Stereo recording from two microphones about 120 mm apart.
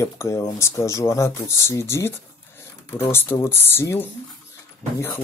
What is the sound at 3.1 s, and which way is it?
Speech, 20° left (ahead or behind).